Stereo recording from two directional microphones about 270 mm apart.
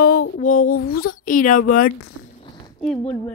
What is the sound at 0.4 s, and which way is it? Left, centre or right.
Speech, left.